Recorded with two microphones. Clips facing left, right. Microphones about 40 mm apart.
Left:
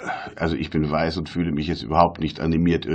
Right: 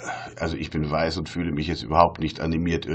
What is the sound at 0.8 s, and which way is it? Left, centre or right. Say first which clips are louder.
Speech: left 2 dB; centre.